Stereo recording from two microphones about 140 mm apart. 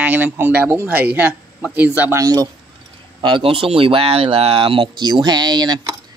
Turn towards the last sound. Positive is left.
turn(degrees=-30)  # may be behind; listen again after turning